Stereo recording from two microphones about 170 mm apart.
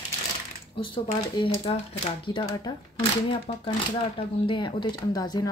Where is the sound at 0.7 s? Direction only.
30° left (ahead or behind).